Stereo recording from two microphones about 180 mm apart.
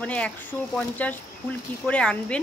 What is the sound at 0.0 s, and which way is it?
Speech, 5° left (ahead or behind).